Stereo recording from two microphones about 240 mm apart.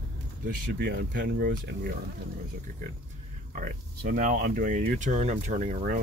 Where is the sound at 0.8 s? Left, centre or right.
Right.